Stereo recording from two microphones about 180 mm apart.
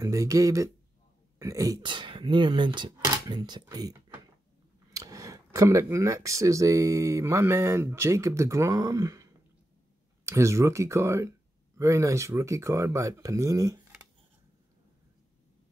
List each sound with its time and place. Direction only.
0.0 s speech: 15° right (ahead or behind)
4.9 s speech: 20° right (ahead or behind)